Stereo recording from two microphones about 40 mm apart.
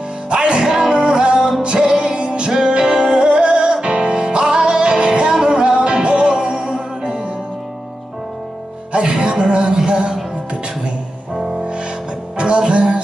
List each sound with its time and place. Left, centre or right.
0.3 s music: right
8.9 s music: right
12.4 s music: right